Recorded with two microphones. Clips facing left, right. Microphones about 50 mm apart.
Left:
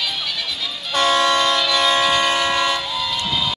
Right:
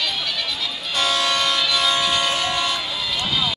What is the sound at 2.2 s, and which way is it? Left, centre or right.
Vehicle, left.